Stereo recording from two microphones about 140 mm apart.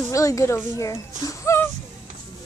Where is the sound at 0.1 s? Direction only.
25° left (ahead or behind).